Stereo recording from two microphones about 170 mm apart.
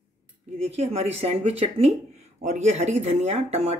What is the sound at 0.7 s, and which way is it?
Speech, 40° right (ahead or behind).